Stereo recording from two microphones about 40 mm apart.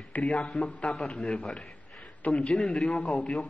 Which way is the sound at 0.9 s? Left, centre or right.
Centre.